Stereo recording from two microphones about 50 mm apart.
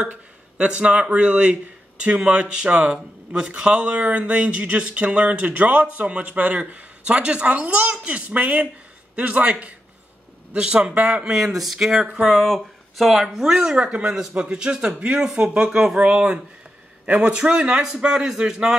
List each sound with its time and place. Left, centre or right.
0.0 s a man's voice: right